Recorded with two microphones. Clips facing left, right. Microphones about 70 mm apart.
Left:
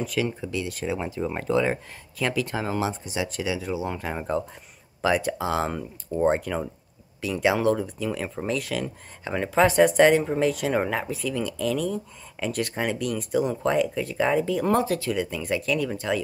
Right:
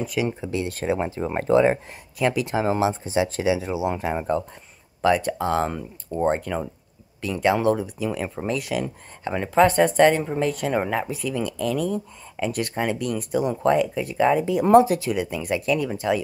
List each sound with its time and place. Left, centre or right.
0.2 s speech: centre
0.5 s speech: right
2.1 s speech: centre
5.0 s speech: centre
14.4 s speech: centre